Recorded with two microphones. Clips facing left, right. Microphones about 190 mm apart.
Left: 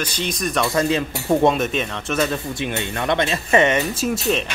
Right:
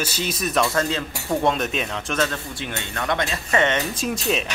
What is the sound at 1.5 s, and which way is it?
Speech, centre (ahead or behind).